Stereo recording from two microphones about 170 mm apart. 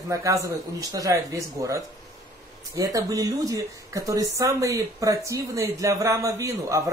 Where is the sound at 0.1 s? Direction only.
20° right (ahead or behind).